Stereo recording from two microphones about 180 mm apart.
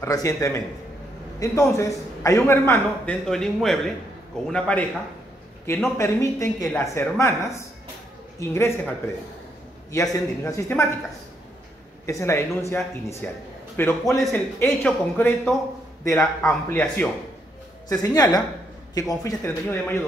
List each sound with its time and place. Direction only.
0.0 s a man's voice: 20° left (ahead or behind)
3.3 s speech: 5° left (ahead or behind)
5.9 s a man's voice: 15° left (ahead or behind)
9.8 s a man's voice: 15° left (ahead or behind)
12.1 s a man's voice: 15° left (ahead or behind)
17.8 s a man's voice: 20° left (ahead or behind)